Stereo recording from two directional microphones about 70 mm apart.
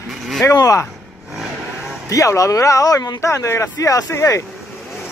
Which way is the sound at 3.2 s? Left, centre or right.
Left.